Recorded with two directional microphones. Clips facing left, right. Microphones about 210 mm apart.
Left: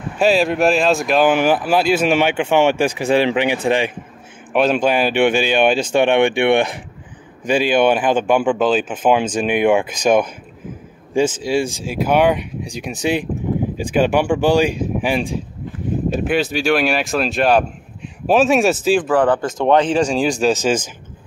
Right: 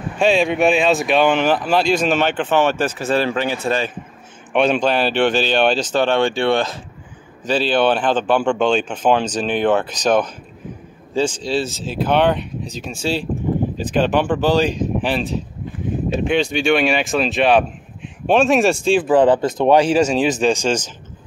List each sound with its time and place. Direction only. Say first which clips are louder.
0.2 s speech: left 1 dB; 5° left (ahead or behind)
4.5 s speech: left 1 dB; 5° left (ahead or behind)
19.0 s speech: right 2 dB; 20° right (ahead or behind); by 20.9 s 5° left (ahead or behind)